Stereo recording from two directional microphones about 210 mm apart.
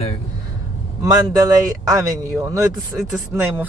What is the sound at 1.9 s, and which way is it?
A man's voice, 15° right (ahead or behind).